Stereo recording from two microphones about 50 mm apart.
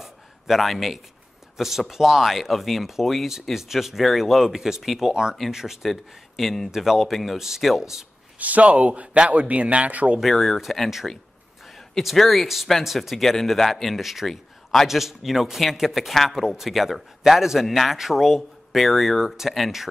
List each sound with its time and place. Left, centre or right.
0.0 s a sound: centre
1.6 s speech: centre
8.4 s a man's voice: right
10.2 s speech: centre
11.9 s speech: centre